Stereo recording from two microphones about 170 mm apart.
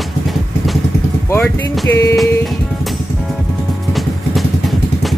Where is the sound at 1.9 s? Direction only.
15° left (ahead or behind).